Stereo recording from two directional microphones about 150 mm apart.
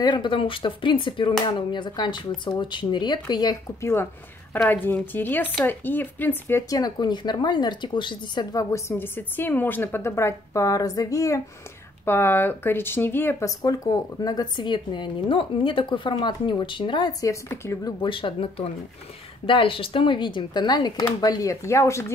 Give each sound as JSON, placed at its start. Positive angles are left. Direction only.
{"t": 0.0, "sound": "speech", "side_deg": 30}
{"t": 18.0, "sound": "speech", "side_deg": 35}